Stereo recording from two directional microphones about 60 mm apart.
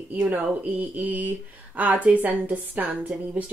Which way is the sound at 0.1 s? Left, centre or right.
Right.